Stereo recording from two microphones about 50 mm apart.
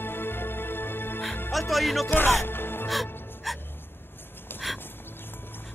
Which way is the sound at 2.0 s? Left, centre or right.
Left.